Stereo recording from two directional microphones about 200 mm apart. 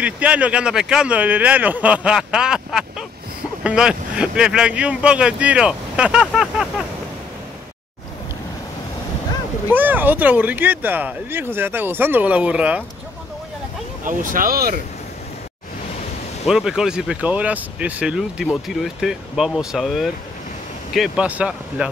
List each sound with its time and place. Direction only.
0.0 s speech: 5° right (ahead or behind)
9.7 s speech: 10° right (ahead or behind)
14.0 s speech: 45° right (ahead or behind)
16.4 s speech: 5° right (ahead or behind)